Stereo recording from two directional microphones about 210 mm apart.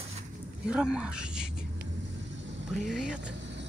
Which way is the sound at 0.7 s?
5° right (ahead or behind).